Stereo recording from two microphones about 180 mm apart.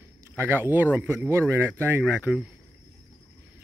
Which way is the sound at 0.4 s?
10° right (ahead or behind).